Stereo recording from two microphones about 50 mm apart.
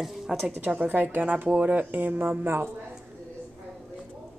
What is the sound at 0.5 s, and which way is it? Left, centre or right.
Speech, right.